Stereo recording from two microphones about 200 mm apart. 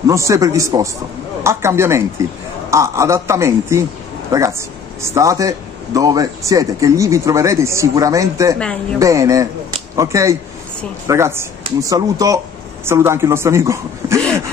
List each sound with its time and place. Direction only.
0.0 s speech: 15° right (ahead or behind)